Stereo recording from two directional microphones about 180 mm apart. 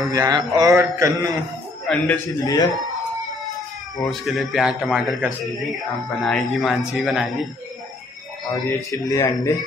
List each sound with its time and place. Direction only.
0.0 s speech: 20° right (ahead or behind)
1.9 s speech: 10° left (ahead or behind)
2.4 s a man's voice: 20° left (ahead or behind)
4.1 s a man's voice: centre (ahead or behind)
8.6 s speech: 15° left (ahead or behind)